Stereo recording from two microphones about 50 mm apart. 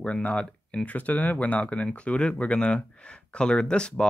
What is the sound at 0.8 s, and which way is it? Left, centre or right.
Speech, left.